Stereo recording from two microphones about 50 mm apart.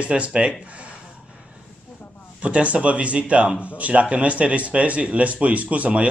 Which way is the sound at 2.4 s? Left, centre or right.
Right.